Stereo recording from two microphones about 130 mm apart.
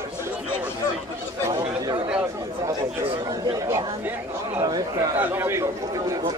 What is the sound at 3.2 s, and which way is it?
Speech, 30° right (ahead or behind).